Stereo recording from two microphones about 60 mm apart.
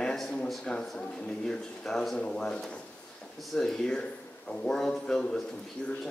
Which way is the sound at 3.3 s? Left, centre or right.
Centre.